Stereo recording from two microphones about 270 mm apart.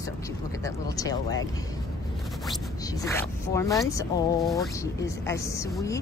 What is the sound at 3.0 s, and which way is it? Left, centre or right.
Speech, centre.